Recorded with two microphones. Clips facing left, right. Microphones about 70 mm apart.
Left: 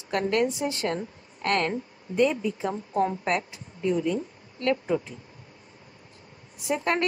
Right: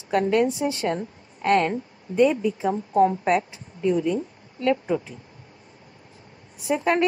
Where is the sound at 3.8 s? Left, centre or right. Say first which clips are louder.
Right 3 dB; centre.